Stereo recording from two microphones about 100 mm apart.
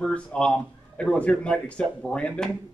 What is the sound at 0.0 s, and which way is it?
A man's voice, 10° left (ahead or behind).